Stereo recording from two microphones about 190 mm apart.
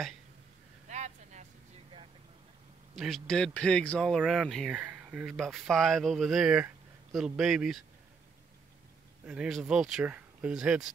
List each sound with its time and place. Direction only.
0.8 s vehicle: 40° right (ahead or behind)
3.0 s speech: centre (ahead or behind)
9.2 s speech: 5° right (ahead or behind)